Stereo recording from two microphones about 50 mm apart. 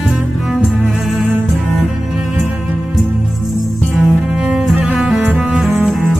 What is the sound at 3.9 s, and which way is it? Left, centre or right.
Cello, centre.